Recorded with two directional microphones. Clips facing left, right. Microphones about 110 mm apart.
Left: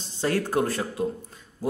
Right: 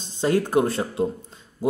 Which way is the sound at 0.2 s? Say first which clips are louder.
Right 4 dB; 20° right (ahead or behind).